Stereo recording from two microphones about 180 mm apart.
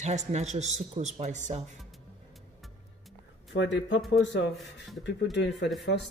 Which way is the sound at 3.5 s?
85° left.